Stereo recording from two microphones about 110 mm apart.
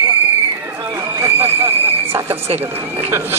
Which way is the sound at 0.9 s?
25° right (ahead or behind).